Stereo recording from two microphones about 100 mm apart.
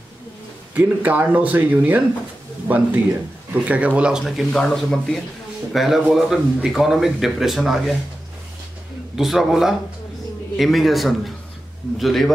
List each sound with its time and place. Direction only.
0.7 s speech: 15° right (ahead or behind)
4.2 s a man's voice: 5° left (ahead or behind)
9.1 s a man's voice: centre (ahead or behind)